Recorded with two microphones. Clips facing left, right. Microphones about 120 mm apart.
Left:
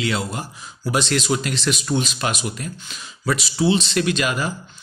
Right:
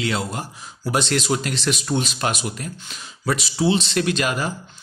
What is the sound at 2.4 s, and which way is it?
A man's voice, 40° right (ahead or behind).